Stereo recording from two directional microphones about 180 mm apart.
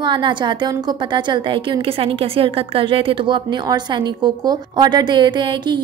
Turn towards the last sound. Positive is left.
turn(degrees=-25)  # may be behind; listen again after turning